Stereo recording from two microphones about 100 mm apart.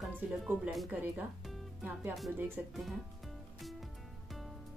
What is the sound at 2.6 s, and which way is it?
Speech, 15° right (ahead or behind).